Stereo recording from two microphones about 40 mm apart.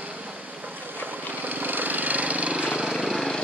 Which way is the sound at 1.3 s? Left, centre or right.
Right.